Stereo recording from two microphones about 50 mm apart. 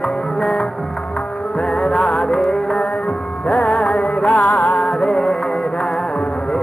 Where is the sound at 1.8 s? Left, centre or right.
Centre.